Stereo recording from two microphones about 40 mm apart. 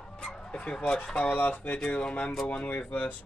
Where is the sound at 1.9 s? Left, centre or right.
Left.